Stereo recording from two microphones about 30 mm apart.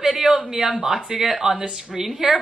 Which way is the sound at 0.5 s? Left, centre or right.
Right.